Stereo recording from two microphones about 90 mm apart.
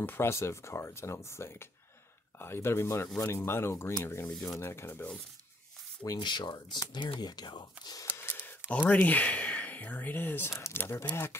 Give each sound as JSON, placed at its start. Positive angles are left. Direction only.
{"t": 0.0, "sound": "speech", "side_deg": 30}
{"t": 6.1, "sound": "speech", "side_deg": 60}
{"t": 8.2, "sound": "a sound", "side_deg": 25}
{"t": 8.6, "sound": "speech", "side_deg": 20}